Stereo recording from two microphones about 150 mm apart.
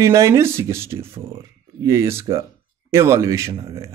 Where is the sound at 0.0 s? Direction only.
20° right (ahead or behind).